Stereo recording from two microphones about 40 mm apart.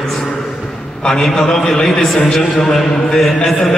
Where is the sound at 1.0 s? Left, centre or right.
Centre.